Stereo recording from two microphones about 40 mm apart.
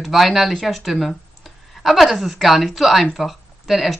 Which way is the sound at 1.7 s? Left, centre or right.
Centre.